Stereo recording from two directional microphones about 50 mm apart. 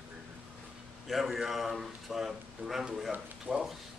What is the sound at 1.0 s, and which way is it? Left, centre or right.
A man's voice, centre.